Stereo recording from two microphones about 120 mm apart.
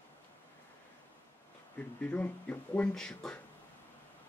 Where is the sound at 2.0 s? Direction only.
10° left (ahead or behind).